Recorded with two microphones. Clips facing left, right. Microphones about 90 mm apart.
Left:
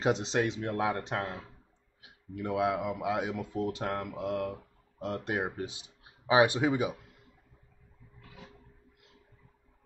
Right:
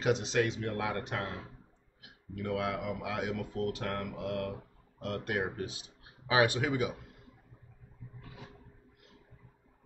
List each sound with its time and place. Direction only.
0.0 s speech: 25° left (ahead or behind)